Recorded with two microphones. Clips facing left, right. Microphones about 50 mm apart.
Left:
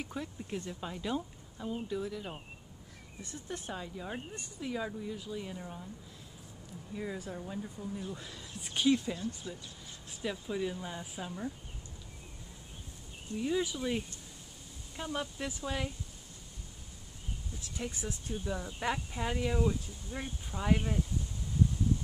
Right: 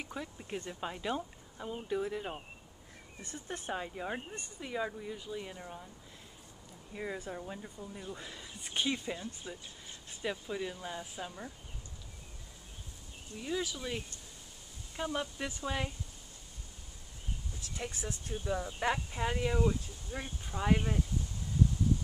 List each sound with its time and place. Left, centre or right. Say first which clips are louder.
0.0 s speech: left 2 dB; centre
6.9 s speech: even; centre
10.5 s speech: left 2 dB; centre
13.4 s speech: left 4 dB; centre
15.0 s speech: right 1 dB; centre
18.0 s speech: even; centre